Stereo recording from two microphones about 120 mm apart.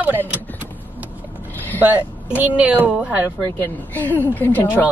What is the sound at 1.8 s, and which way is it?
A woman's voice, 15° right (ahead or behind).